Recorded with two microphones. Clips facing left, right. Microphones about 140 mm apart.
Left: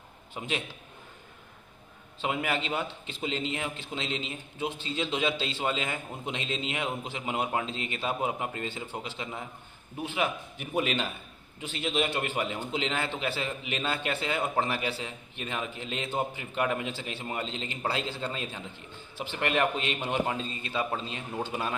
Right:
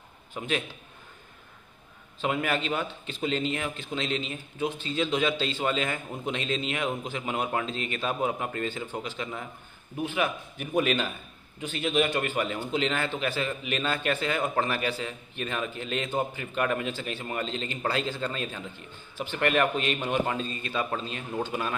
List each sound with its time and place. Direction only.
0.4 s a man's voice: 20° left (ahead or behind)
2.2 s a man's voice: 15° left (ahead or behind)
18.0 s a man's voice: 25° left (ahead or behind)
18.3 s a man's voice: 15° left (ahead or behind)